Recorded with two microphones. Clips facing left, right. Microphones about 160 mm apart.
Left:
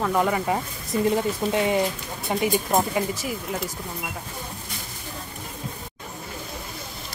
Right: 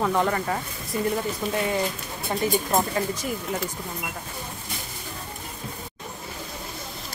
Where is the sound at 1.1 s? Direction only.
20° left (ahead or behind).